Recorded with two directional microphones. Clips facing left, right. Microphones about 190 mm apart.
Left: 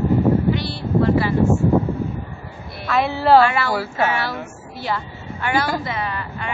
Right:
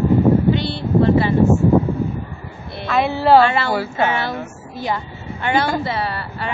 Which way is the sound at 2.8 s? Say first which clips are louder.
Right 2 dB; centre (ahead or behind).